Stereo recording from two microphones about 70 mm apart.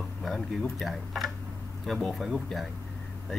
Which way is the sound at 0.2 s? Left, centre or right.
Centre.